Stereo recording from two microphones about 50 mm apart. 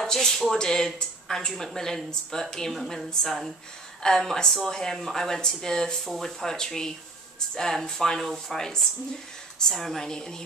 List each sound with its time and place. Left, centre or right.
0.0 s speech: centre
6.0 s speech: centre
6.4 s speech: centre